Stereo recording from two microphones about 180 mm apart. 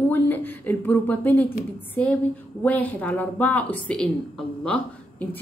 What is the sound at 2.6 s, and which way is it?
A woman's voice, 10° left (ahead or behind).